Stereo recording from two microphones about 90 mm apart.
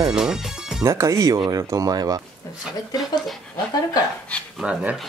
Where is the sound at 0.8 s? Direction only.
35° right (ahead or behind).